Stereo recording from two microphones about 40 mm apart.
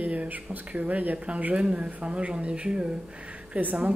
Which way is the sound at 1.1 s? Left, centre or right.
Right.